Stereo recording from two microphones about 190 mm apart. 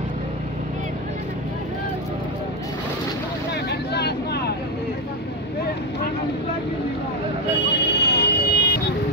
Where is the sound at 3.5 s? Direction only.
60° left (ahead or behind).